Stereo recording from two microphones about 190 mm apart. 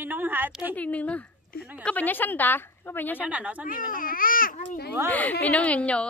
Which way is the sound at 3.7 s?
45° left (ahead or behind).